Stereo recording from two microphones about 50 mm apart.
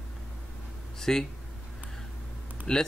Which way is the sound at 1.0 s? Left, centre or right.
Centre.